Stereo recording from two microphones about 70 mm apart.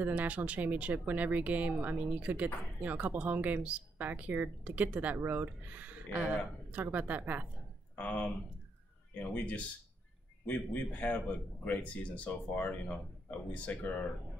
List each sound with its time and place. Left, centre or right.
0.0 s speech: right
7.9 s a man's voice: left